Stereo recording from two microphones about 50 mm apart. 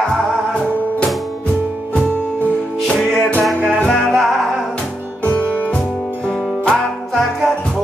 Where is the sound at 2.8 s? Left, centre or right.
Centre.